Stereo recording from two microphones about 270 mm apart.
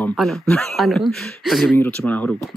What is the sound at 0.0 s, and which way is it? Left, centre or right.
Speech, centre.